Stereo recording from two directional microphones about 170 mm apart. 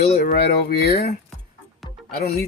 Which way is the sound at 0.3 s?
70° left (ahead or behind).